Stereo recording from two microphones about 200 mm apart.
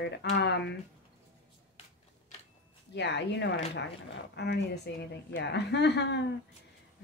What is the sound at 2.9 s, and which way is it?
Speech, 60° left (ahead or behind).